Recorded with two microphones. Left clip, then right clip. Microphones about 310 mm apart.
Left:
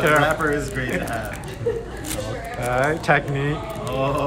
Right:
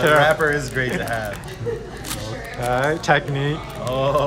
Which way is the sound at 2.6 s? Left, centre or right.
Centre.